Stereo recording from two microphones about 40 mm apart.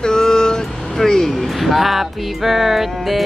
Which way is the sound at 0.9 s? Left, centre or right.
Centre.